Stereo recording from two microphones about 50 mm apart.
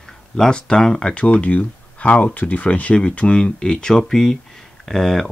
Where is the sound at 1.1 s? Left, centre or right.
Left.